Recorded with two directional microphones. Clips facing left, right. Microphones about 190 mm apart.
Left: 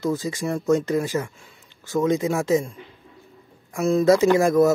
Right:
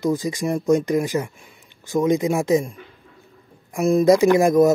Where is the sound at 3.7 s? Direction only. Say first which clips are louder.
Right 2 dB; 15° right (ahead or behind).